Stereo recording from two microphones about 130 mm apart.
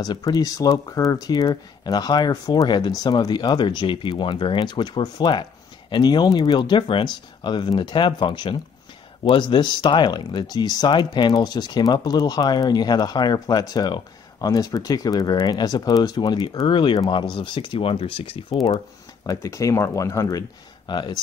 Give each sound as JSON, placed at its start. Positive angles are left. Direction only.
{"t": 0.0, "sound": "speech", "side_deg": 30}
{"t": 19.2, "sound": "speech", "side_deg": 25}